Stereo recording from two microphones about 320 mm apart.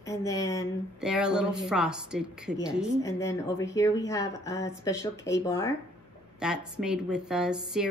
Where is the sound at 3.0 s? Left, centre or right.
Centre.